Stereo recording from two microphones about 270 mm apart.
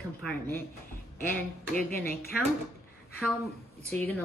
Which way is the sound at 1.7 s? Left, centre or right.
Left.